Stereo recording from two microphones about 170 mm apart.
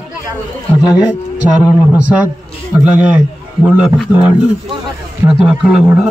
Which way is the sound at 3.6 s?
5° right (ahead or behind).